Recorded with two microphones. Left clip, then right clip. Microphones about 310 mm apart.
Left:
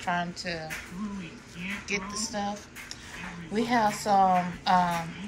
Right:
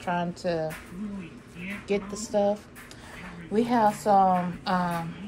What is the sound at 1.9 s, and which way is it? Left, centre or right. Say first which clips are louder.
Speech: right 4 dB; centre.